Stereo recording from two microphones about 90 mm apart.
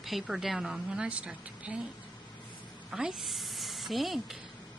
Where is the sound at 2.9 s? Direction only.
5° right (ahead or behind).